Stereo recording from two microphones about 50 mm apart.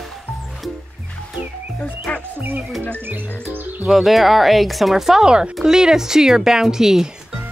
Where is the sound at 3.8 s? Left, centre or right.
Centre.